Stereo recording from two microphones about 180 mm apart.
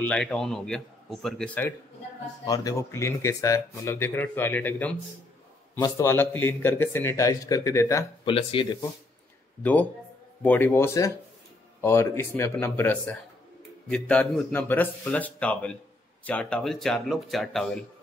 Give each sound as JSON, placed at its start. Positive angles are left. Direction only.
{"t": 0.0, "sound": "a man's voice", "side_deg": 5}
{"t": 2.4, "sound": "speech", "side_deg": 20}
{"t": 8.3, "sound": "speech", "side_deg": 30}
{"t": 9.6, "sound": "a man's voice", "side_deg": 10}